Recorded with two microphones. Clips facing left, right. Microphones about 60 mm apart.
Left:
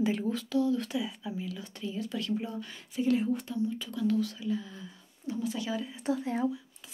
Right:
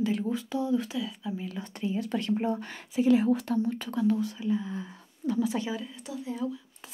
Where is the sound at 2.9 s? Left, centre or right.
Right.